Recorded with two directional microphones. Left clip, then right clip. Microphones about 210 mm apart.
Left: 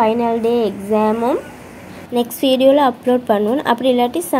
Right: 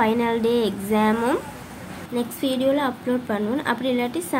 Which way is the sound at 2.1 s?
25° left (ahead or behind).